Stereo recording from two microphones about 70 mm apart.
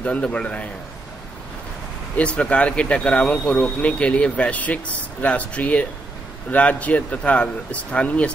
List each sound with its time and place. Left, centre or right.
0.0 s speech: centre
2.1 s speech: centre